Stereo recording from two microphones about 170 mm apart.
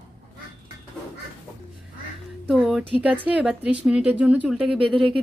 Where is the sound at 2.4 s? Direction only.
5° right (ahead or behind).